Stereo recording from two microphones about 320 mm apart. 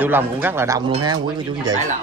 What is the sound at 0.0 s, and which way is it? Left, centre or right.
Speech, centre.